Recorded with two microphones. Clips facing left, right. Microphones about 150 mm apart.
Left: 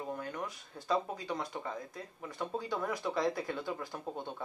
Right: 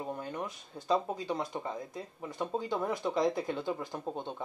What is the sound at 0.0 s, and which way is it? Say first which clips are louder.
Speech: right 2 dB; 25° right (ahead or behind).